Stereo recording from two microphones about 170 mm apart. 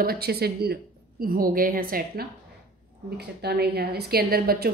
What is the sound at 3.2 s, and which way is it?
A woman's voice, 70° right (ahead or behind).